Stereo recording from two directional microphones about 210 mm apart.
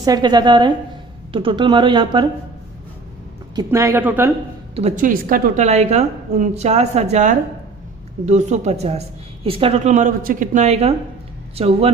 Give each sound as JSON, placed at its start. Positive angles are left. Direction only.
{"t": 0.0, "sound": "speech", "side_deg": -20}
{"t": 3.5, "sound": "speech", "side_deg": -15}
{"t": 4.7, "sound": "speech", "side_deg": -35}